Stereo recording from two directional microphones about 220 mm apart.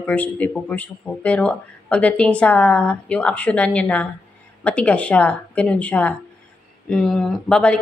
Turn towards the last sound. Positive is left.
turn(degrees=5)  # may be behind; listen again after turning